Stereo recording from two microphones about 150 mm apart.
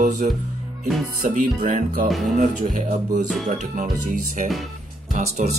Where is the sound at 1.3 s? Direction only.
60° right (ahead or behind).